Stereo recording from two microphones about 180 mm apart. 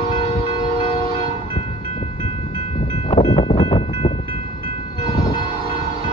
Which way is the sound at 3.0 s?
35° left (ahead or behind).